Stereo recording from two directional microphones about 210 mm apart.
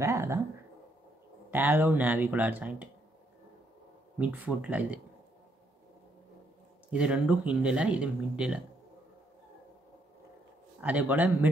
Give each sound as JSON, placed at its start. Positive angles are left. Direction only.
{"t": 0.0, "sound": "speech", "side_deg": -15}
{"t": 1.5, "sound": "speech", "side_deg": -10}
{"t": 4.2, "sound": "speech", "side_deg": -5}
{"t": 6.9, "sound": "speech", "side_deg": -5}
{"t": 10.8, "sound": "speech", "side_deg": -5}